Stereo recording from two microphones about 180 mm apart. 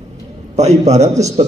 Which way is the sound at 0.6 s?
40° right (ahead or behind).